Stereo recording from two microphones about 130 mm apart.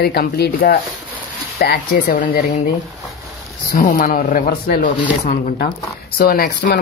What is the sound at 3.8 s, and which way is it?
Speech, 90° left.